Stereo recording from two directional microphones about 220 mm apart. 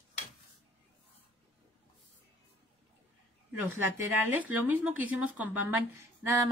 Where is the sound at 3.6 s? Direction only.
10° right (ahead or behind).